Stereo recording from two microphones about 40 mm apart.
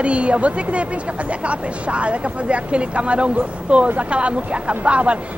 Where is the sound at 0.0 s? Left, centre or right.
Right.